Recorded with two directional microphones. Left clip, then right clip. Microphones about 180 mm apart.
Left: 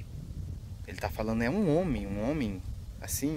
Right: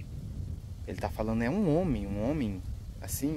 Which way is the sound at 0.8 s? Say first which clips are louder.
Even; 15° left (ahead or behind).